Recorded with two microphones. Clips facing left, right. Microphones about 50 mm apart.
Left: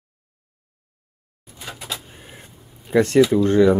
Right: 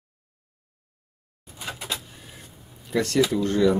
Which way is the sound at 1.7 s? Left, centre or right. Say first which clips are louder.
Even; centre.